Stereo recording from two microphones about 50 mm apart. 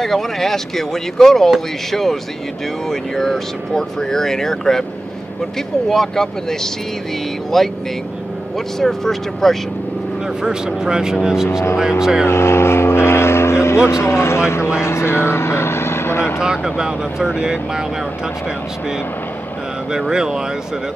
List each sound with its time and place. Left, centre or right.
0.0 s speech: centre
5.9 s speech: centre
10.4 s speech: centre
12.3 s speech: left
16.3 s speech: centre
19.9 s speech: centre